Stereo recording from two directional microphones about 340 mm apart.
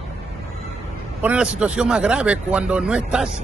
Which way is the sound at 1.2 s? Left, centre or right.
Centre.